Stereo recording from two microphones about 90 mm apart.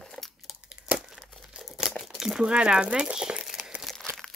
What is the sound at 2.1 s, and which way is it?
Speech, 5° right (ahead or behind).